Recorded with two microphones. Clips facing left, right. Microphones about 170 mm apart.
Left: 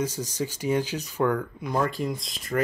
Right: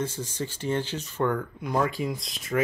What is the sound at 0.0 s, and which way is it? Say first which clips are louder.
Speech: left 2 dB; 40° left (ahead or behind).